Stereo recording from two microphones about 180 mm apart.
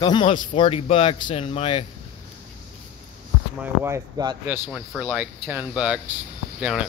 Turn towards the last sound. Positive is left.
turn(degrees=-5)  # may be behind; listen again after turning